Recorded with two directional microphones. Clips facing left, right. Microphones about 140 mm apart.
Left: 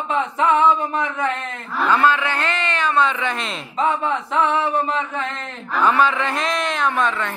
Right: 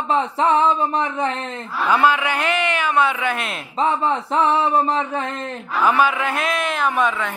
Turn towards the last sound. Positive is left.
turn(degrees=-10)  # may be behind; listen again after turning